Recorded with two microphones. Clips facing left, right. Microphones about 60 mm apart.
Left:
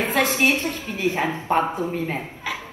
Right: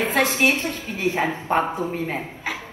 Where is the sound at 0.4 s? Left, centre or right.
Right.